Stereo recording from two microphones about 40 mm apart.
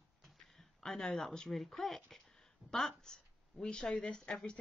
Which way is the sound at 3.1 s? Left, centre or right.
Centre.